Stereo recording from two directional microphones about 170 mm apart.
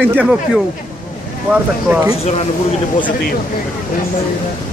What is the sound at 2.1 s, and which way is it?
Speech, 40° left (ahead or behind).